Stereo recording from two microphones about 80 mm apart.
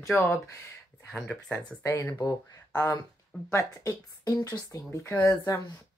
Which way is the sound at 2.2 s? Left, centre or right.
Left.